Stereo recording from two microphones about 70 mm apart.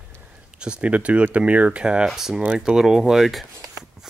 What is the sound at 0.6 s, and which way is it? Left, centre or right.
Speech, centre.